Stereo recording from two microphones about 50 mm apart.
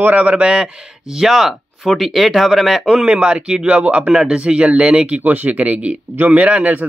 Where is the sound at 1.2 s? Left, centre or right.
Centre.